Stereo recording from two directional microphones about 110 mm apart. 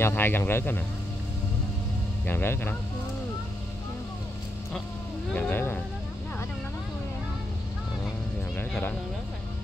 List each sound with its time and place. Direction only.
0.0 s speech: 20° left (ahead or behind)
2.2 s speech: 20° left (ahead or behind)
5.3 s a sound: 15° left (ahead or behind)
8.5 s cat: 15° left (ahead or behind)